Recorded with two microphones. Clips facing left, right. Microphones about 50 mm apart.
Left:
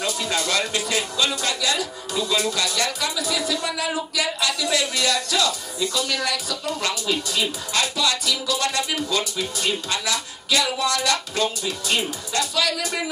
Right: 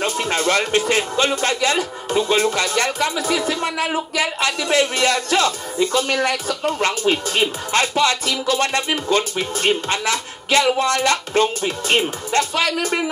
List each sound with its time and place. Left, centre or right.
0.0 s speech: right